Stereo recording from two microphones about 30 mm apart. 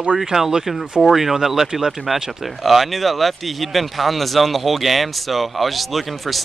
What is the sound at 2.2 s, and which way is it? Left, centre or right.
Speech, centre.